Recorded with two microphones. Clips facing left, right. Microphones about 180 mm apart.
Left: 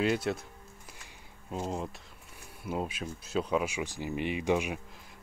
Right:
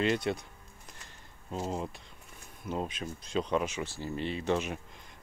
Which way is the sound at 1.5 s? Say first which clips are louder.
Even; centre (ahead or behind).